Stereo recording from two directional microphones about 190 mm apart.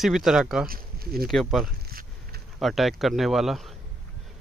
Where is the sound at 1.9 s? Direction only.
50° right (ahead or behind).